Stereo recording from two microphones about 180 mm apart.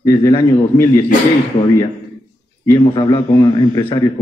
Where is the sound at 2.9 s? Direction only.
25° left (ahead or behind).